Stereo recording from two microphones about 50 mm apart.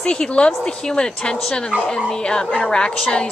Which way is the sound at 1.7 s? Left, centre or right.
Right.